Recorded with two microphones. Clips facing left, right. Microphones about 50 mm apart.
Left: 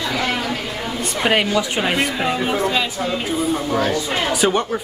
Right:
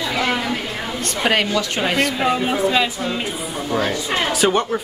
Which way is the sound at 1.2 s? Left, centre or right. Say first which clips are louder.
Left 1 dB; centre.